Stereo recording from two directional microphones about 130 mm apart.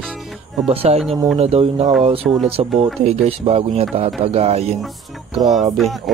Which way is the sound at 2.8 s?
55° right (ahead or behind).